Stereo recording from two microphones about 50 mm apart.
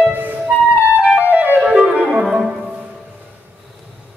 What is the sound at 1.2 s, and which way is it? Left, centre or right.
Music, right.